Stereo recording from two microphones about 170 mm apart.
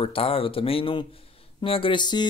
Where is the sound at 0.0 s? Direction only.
35° left (ahead or behind).